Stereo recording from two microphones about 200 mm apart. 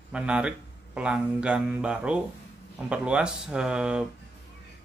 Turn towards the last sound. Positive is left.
turn(degrees=-5)  # may be behind; listen again after turning